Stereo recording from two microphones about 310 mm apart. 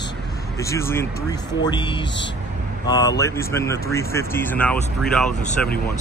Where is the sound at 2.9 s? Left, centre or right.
Centre.